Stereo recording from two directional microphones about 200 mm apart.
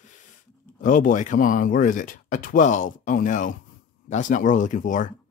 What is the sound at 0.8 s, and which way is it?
Speech, 40° left (ahead or behind).